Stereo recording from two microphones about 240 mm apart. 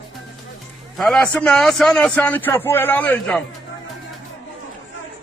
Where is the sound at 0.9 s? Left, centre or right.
Centre.